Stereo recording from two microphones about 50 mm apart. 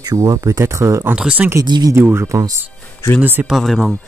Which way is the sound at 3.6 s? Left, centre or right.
Centre.